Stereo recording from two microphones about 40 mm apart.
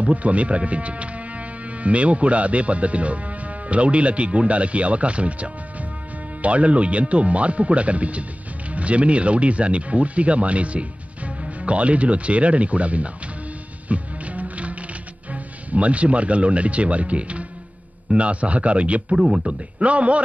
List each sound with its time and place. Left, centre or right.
0.0 s speech: right
13.8 s music: right
15.3 s speech: right